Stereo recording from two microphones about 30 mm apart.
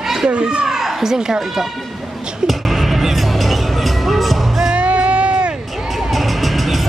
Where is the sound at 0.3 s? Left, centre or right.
Right.